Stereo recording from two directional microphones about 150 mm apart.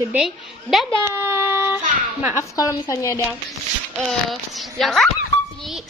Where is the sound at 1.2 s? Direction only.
15° right (ahead or behind).